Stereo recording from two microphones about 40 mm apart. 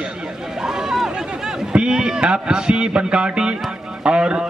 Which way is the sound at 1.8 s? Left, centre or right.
Centre.